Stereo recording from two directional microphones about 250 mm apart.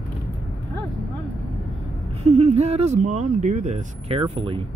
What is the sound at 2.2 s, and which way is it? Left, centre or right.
Speech, right.